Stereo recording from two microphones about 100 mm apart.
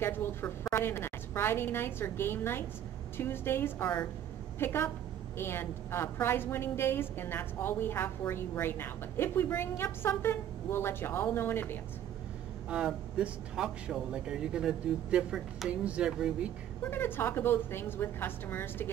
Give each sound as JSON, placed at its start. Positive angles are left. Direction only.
{"t": 0.0, "sound": "a woman's voice", "side_deg": 20}
{"t": 12.6, "sound": "speech", "side_deg": -10}
{"t": 16.9, "sound": "a woman's voice", "side_deg": 20}